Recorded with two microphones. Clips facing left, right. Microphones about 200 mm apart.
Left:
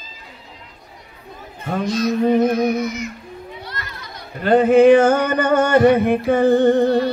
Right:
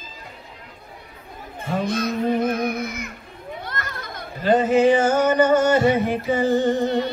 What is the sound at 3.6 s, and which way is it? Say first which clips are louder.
Children playing: right 2 dB; 50° right (ahead or behind).